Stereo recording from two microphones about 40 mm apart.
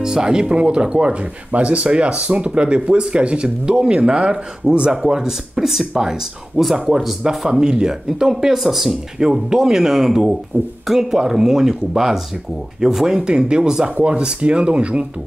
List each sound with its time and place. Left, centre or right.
0.0 s speech: centre
10.5 s speech: right
10.9 s speech: centre
14.0 s speech: right